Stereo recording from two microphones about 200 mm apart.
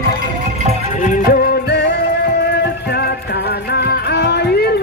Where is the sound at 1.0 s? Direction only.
45° left (ahead or behind).